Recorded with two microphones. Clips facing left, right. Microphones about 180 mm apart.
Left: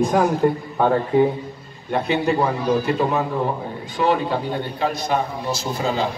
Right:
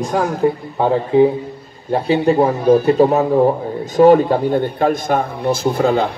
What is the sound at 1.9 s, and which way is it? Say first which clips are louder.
A man's voice: right 5 dB; 35° right (ahead or behind).